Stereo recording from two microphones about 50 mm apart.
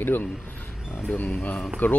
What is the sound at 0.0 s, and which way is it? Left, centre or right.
Speech, left.